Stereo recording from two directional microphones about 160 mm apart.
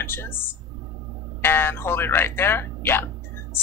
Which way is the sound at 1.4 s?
15° left (ahead or behind).